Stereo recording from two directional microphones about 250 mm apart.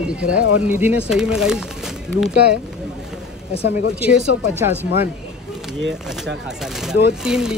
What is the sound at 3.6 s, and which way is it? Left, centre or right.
Speech, left.